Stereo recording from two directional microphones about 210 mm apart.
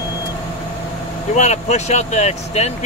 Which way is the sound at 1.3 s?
35° left (ahead or behind).